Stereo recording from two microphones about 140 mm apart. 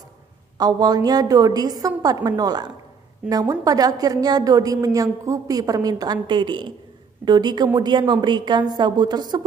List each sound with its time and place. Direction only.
0.6 s a woman's voice: 30° right (ahead or behind)